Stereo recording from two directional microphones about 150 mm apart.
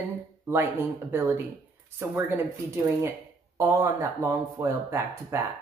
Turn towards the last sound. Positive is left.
turn(degrees=-20)  # may be behind; listen again after turning